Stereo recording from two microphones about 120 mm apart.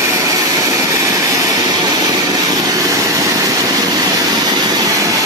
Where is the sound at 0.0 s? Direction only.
30° right (ahead or behind).